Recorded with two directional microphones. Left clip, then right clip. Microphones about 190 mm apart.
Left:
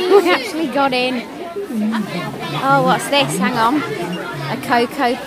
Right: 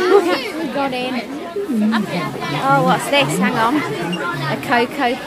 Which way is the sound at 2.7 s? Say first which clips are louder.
Left 1 dB; 15° left (ahead or behind).